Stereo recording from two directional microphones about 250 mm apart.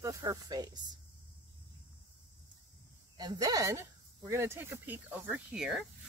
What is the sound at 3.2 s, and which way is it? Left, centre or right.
Speech, centre.